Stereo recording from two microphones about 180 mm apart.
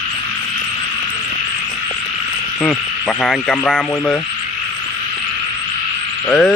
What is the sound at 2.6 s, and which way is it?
Speech, 5° left (ahead or behind).